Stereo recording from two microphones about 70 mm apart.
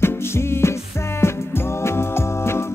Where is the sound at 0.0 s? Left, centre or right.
Left.